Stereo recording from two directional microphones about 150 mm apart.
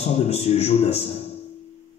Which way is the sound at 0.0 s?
45° left (ahead or behind).